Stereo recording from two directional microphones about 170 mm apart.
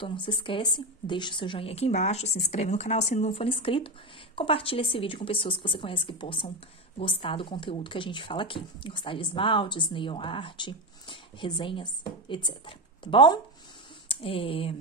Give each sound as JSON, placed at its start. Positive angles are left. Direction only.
{"t": 0.0, "sound": "speech", "side_deg": 30}